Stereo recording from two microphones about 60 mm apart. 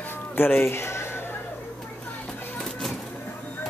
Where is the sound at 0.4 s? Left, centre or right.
Left.